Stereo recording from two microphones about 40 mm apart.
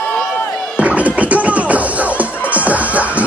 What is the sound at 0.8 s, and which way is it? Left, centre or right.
Music, right.